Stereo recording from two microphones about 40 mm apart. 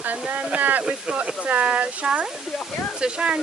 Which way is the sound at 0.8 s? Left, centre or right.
Right.